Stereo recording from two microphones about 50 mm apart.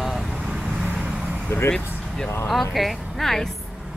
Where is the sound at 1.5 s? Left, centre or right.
Left.